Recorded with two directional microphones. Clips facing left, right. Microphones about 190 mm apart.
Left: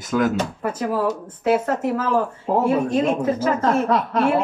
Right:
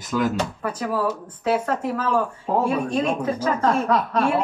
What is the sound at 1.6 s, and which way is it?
Speech, 25° left (ahead or behind).